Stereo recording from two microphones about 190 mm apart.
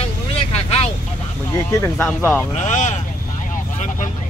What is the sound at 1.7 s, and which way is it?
Speech, 15° left (ahead or behind).